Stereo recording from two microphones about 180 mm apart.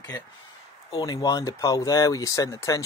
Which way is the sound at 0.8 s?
20° left (ahead or behind).